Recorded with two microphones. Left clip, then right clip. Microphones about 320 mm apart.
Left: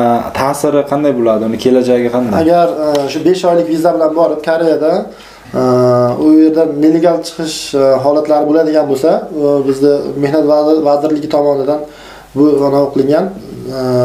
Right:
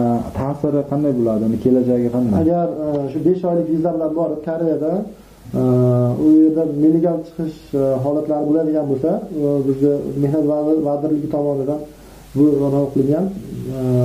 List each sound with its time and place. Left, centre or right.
0.0 s speech: centre